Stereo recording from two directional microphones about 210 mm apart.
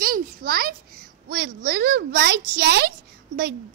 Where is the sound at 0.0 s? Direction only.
45° right (ahead or behind).